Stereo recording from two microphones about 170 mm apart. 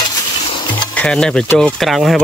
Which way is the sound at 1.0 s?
5° left (ahead or behind).